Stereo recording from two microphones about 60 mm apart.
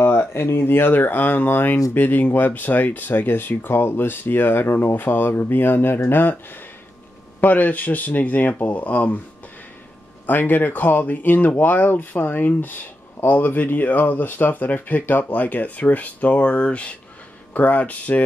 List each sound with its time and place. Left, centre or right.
0.0 s speech: left
7.3 s speech: left
10.2 s speech: left